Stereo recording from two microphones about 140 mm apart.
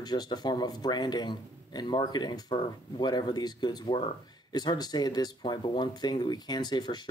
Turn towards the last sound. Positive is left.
turn(degrees=30)  # may be behind; listen again after turning